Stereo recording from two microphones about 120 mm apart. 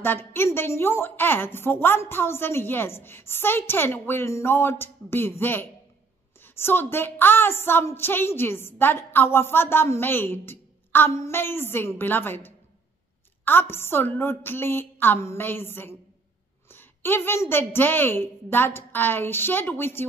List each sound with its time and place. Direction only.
0.0 s a woman's voice: 20° left (ahead or behind)